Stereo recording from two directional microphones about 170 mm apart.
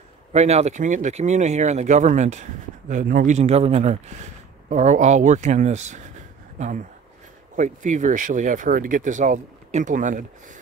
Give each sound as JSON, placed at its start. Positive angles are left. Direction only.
{"t": 0.3, "sound": "speech", "side_deg": -40}